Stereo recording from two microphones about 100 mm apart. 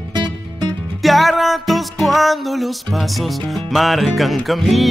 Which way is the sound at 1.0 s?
Centre (ahead or behind).